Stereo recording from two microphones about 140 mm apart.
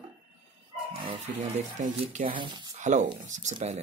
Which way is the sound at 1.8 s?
65° right (ahead or behind).